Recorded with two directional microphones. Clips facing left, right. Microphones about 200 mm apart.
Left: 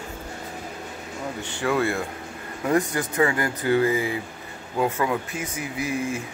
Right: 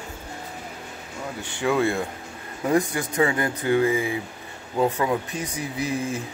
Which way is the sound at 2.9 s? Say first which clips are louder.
Even; 25° right (ahead or behind).